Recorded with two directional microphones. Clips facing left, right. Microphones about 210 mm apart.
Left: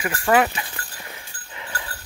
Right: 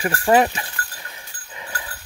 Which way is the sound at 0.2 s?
30° right (ahead or behind).